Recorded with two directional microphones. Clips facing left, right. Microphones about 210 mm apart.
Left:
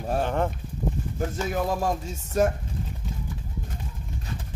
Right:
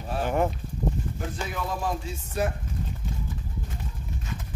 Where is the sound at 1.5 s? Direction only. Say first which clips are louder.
Left 4 dB; 45° left (ahead or behind).